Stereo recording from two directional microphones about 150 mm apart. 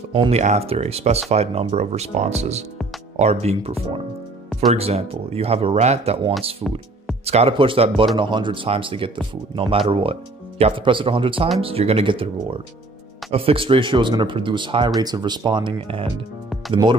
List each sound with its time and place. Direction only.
0.1 s speech: 40° right (ahead or behind)
6.6 s speech: 30° right (ahead or behind)
7.2 s speech: 40° right (ahead or behind)